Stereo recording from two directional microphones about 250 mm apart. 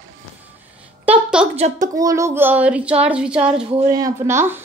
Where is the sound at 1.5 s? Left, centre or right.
Right.